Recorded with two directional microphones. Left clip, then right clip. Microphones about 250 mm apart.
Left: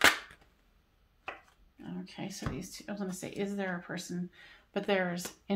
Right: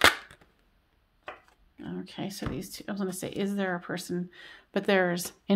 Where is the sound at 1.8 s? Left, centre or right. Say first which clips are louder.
Right 5 dB; right.